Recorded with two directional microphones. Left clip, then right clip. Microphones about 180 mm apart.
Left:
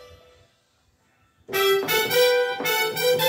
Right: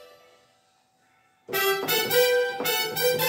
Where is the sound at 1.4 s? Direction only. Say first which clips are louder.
Left 4 dB; 25° right (ahead or behind).